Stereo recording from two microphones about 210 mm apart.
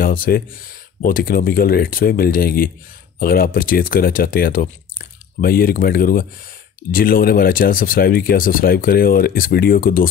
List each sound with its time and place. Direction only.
0.0 s speech: 40° left (ahead or behind)